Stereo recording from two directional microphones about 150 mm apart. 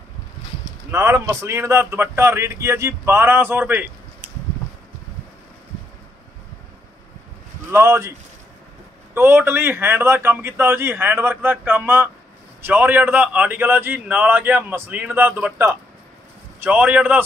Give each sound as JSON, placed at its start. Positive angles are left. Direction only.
{"t": 0.9, "sound": "a man's voice", "side_deg": -20}
{"t": 7.7, "sound": "a man's voice", "side_deg": -15}
{"t": 9.1, "sound": "a man's voice", "side_deg": -15}